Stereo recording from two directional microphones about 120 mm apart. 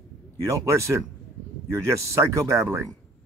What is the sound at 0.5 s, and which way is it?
Speech, 25° right (ahead or behind).